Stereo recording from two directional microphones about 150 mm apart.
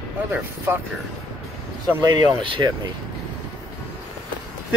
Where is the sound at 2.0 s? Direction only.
25° right (ahead or behind).